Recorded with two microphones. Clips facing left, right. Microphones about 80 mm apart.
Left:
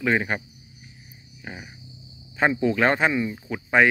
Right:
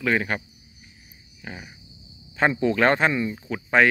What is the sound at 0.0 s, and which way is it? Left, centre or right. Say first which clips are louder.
Speech: even; centre.